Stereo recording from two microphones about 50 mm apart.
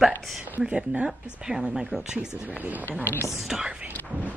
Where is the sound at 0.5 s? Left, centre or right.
Right.